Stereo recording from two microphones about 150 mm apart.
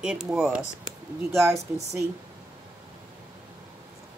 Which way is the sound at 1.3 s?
20° right (ahead or behind).